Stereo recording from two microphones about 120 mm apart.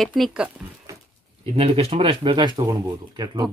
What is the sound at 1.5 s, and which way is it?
Speech, 55° right (ahead or behind).